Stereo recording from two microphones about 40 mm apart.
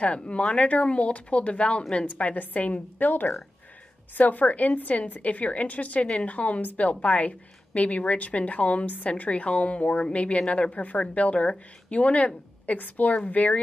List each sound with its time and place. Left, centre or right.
0.0 s a woman's voice: left